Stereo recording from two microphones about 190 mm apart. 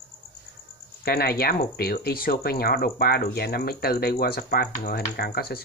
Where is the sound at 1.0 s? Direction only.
55° left (ahead or behind).